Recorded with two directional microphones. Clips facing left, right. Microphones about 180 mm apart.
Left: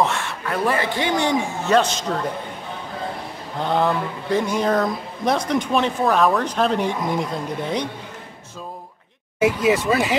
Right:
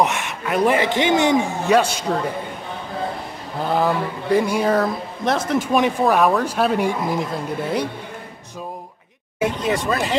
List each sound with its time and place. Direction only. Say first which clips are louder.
0.0 s speech: right 1 dB; 20° right (ahead or behind)
3.5 s speech: right 1 dB; 5° right (ahead or behind)
9.4 s speech: left 3 dB; 5° left (ahead or behind)